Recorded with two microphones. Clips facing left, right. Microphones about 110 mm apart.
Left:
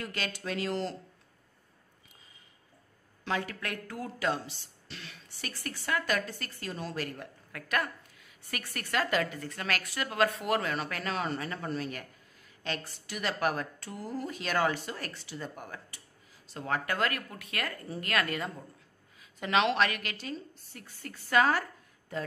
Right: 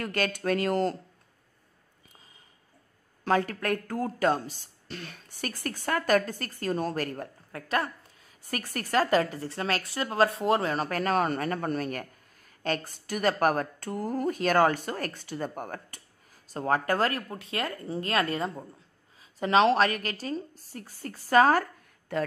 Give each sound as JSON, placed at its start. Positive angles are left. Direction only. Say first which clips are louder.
{"t": 0.0, "sound": "speech", "louder": "right 8 dB", "side_deg": -50}
{"t": 3.3, "sound": "speech", "louder": "right 8 dB", "side_deg": -45}
{"t": 7.5, "sound": "a woman's voice", "louder": "right 3 dB", "side_deg": -30}